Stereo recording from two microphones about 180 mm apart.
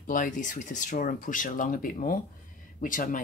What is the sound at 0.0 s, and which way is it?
Speech, 45° left (ahead or behind).